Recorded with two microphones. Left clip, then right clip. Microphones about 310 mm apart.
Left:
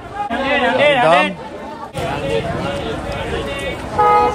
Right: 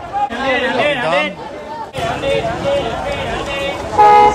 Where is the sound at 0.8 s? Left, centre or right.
Centre.